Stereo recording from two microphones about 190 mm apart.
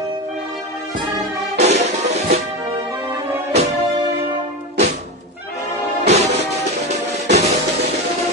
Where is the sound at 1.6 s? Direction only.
35° right (ahead or behind).